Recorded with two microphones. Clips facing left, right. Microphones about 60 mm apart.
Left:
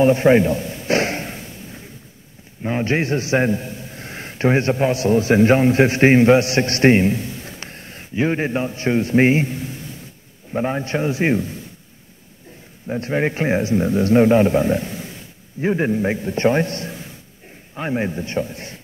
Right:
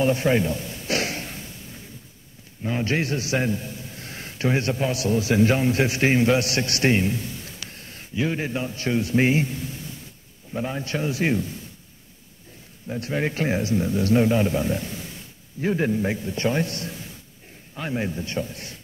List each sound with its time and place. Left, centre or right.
0.0 s a sound: left
2.6 s a man's voice: left
12.8 s a man's voice: left